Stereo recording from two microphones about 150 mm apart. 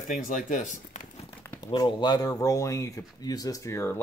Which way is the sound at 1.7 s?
35° left (ahead or behind).